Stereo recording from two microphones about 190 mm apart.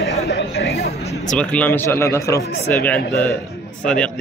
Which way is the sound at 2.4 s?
55° left (ahead or behind).